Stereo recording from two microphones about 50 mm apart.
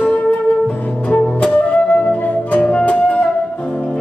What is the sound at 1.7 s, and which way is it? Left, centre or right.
Music, left.